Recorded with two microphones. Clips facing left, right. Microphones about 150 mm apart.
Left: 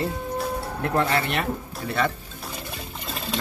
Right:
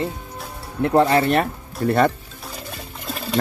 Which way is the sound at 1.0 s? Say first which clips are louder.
Right 8 dB; 35° right (ahead or behind).